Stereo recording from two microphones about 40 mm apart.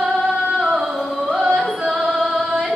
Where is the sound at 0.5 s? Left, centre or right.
Centre.